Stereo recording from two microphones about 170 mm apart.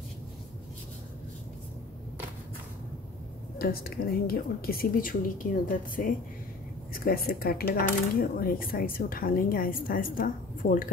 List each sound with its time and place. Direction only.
3.5 s a woman's voice: 60° left (ahead or behind)